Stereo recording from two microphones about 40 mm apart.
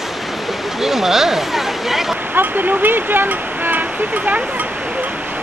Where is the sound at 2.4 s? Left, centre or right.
Right.